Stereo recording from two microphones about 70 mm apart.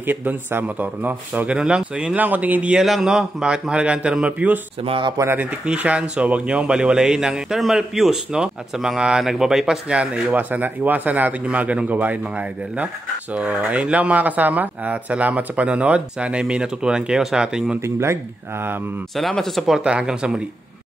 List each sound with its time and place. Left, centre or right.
0.0 s speech: right
2.7 s speech: centre
17.8 s speech: right
19.1 s speech: centre
19.8 s speech: centre